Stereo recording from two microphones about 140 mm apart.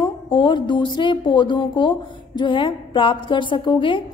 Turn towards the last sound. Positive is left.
turn(degrees=35)  # may be behind; listen again after turning